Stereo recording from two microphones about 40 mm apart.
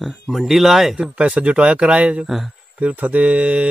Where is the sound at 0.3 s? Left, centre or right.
Centre.